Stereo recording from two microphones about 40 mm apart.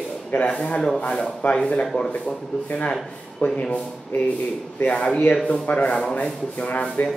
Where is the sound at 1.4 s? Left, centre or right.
Left.